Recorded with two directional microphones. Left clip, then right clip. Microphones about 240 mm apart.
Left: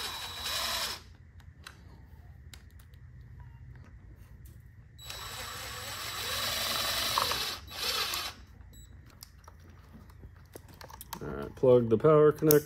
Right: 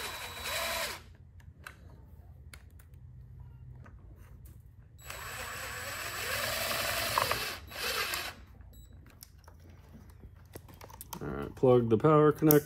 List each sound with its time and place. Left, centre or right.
0.0 s a sound: centre
5.1 s vehicle: centre
11.2 s speech: right